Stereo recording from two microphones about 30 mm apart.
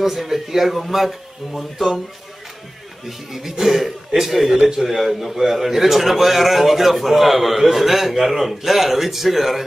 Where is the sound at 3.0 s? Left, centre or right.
Centre.